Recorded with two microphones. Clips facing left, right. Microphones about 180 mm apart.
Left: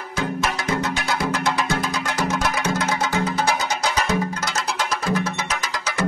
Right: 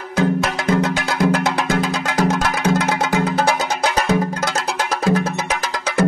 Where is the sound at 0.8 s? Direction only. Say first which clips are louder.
Right 6 dB; 55° right (ahead or behind).